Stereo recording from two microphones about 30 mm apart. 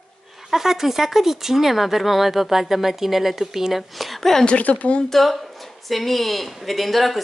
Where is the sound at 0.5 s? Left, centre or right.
Centre.